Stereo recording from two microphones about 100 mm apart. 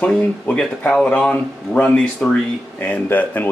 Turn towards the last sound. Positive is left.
turn(degrees=20)  # may be behind; listen again after turning